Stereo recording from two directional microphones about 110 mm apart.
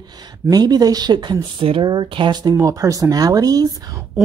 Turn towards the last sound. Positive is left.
turn(degrees=-35)  # may be behind; listen again after turning